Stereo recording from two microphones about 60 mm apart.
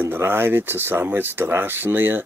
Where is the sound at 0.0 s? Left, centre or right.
Right.